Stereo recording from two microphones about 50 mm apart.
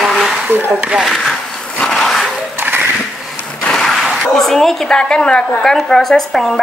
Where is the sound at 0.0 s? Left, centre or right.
Centre.